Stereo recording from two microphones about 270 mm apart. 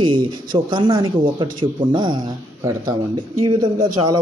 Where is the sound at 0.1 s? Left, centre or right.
Centre.